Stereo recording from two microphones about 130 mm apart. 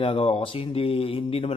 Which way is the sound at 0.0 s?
45° left (ahead or behind).